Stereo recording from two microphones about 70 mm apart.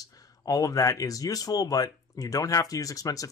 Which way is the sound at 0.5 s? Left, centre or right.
Left.